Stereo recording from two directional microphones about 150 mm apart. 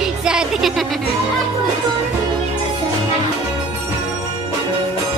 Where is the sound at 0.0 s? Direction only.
5° right (ahead or behind).